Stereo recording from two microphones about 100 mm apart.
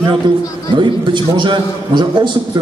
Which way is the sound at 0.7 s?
50° right (ahead or behind).